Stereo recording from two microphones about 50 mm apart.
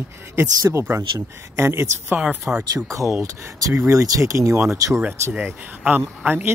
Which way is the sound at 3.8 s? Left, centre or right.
Right.